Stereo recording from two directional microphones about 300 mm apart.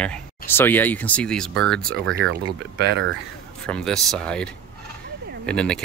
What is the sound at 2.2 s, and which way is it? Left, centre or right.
Speech, right.